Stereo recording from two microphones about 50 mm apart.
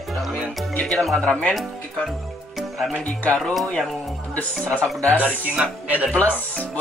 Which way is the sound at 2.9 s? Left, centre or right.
Left.